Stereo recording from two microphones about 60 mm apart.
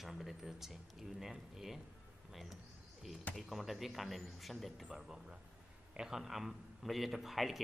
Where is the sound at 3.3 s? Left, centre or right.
Centre.